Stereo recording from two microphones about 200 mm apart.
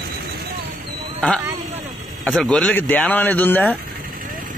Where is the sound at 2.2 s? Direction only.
Centre (ahead or behind).